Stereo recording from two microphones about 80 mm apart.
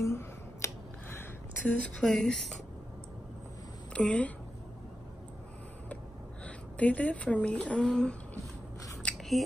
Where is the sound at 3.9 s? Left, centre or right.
Centre.